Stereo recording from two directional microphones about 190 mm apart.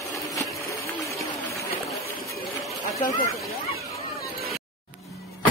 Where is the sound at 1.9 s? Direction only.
Centre (ahead or behind).